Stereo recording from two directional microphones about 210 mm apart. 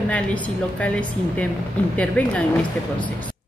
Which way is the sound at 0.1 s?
5° left (ahead or behind).